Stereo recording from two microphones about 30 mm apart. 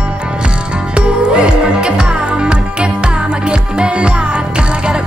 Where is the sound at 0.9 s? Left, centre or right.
Right.